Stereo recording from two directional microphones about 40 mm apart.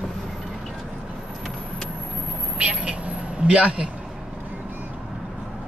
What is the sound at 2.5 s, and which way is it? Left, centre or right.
Vehicle, right.